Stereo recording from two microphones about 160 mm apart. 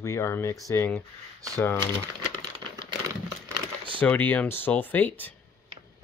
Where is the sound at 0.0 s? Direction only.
20° left (ahead or behind).